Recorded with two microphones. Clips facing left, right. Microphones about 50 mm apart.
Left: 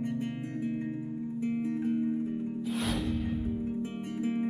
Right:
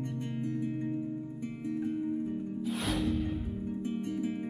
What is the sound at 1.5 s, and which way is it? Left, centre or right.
Music, left.